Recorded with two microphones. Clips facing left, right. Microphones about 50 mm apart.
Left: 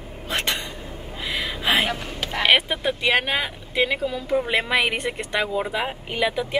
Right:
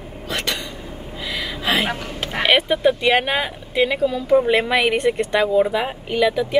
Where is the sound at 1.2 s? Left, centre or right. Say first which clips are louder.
Even; centre.